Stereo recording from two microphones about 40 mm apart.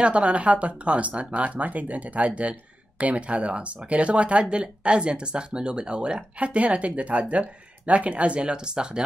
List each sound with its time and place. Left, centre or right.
0.0 s speech: right